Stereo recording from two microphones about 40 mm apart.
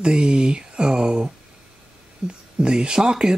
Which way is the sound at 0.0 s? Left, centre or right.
Right.